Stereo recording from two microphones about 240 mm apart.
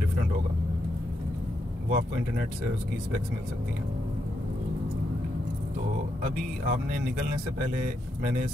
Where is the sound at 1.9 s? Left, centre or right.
Right.